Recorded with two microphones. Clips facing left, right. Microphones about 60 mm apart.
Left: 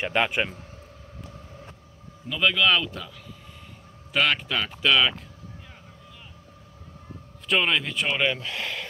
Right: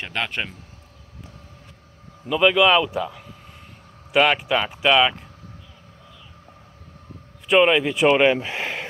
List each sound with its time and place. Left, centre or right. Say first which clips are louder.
0.0 s a man's voice: left 3 dB; centre
2.2 s speech: right 6 dB; centre
7.4 s speech: right 7 dB; centre
8.1 s speech: right 8 dB; right